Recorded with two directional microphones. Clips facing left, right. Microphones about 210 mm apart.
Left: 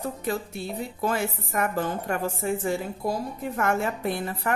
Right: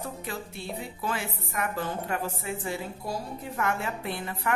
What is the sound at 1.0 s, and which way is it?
A woman's voice, 45° left (ahead or behind).